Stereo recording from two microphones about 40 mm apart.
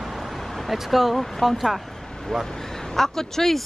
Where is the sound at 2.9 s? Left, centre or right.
Centre.